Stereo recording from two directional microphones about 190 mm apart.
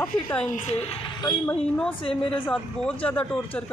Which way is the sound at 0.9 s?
20° left (ahead or behind).